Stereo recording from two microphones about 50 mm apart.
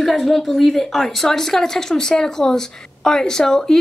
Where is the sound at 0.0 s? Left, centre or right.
Centre.